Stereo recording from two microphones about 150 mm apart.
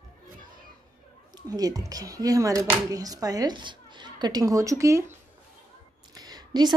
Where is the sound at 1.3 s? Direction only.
25° right (ahead or behind).